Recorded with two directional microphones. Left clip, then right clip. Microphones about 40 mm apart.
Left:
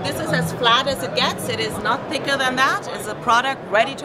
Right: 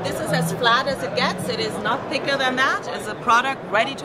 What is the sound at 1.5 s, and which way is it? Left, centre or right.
A woman's voice, centre.